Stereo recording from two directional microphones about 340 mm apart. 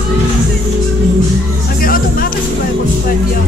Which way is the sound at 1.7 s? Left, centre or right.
Left.